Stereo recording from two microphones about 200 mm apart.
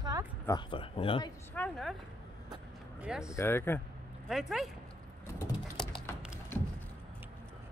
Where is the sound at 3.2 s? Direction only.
15° left (ahead or behind).